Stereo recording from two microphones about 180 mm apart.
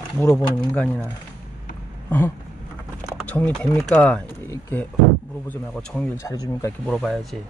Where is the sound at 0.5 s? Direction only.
5° left (ahead or behind).